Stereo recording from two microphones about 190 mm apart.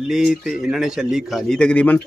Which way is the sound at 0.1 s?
Centre (ahead or behind).